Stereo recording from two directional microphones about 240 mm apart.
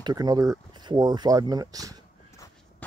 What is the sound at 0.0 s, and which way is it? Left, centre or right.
Speech, centre.